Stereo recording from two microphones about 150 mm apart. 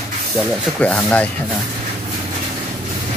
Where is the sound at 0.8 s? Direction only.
10° left (ahead or behind).